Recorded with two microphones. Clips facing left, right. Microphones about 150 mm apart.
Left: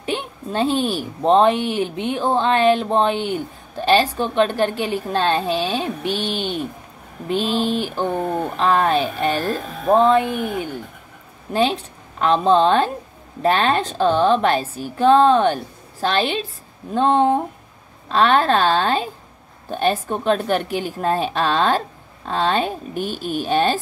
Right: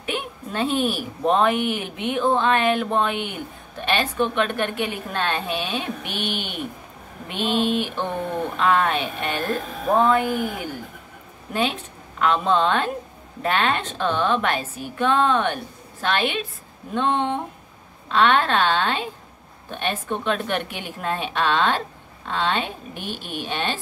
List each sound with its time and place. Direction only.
0.0 s a woman's voice: 30° left (ahead or behind)